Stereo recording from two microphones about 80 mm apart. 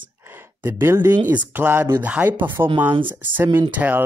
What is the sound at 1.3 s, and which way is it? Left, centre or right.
Speech, right.